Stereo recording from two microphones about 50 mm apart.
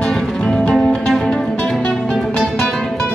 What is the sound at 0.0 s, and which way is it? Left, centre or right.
Music, centre.